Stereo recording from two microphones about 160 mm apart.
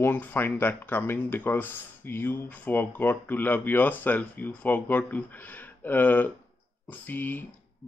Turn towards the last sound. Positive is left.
turn(degrees=10)  # may be behind; listen again after turning